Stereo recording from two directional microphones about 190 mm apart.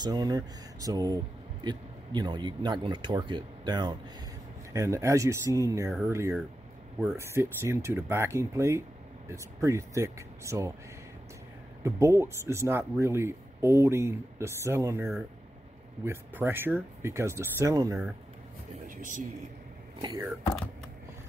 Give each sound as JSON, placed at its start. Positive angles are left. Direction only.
{"t": 0.0, "sound": "speech", "side_deg": -20}
{"t": 11.8, "sound": "speech", "side_deg": -15}
{"t": 18.9, "sound": "music", "side_deg": -45}
{"t": 20.0, "sound": "speech", "side_deg": -20}